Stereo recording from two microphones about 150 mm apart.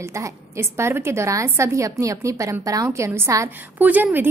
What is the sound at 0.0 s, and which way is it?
A woman's voice, 20° right (ahead or behind).